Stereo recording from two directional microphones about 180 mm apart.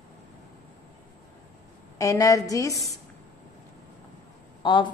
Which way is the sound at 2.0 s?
20° left (ahead or behind).